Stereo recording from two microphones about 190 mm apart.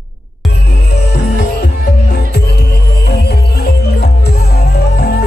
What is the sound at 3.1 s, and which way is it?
Music, 55° left (ahead or behind).